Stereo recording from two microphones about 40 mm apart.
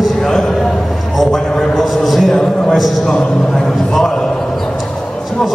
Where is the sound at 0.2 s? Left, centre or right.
Centre.